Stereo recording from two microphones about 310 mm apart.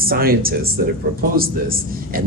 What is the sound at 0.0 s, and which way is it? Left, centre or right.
A man's voice, right.